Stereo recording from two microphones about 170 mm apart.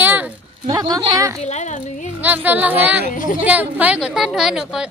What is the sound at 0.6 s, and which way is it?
Speech, 20° right (ahead or behind).